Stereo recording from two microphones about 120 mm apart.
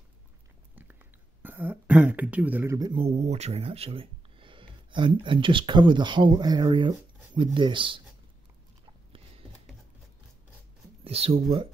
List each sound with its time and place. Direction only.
1.4 s speech: 15° right (ahead or behind)
2.7 s speech: 30° right (ahead or behind)
3.0 s speech: 65° right (ahead or behind); by 8.0 s 45° right (ahead or behind)
11.1 s speech: 55° right (ahead or behind)